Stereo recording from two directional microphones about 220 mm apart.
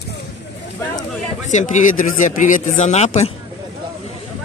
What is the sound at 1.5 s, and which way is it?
A man's voice, 35° left (ahead or behind).